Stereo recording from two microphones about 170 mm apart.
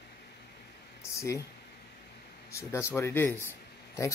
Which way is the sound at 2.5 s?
15° left (ahead or behind).